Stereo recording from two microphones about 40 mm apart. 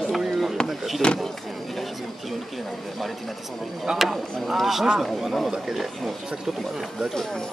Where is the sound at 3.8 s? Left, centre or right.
Centre.